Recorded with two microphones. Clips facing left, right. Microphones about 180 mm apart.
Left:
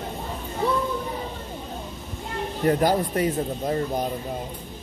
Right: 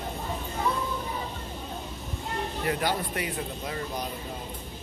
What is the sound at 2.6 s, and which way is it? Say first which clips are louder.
Speech: left 9 dB; 40° left (ahead or behind).